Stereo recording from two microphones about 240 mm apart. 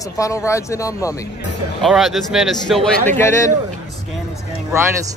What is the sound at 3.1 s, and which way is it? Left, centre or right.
Speech, centre.